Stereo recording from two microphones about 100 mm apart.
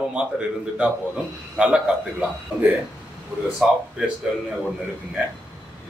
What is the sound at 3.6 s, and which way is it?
Speech, 10° right (ahead or behind).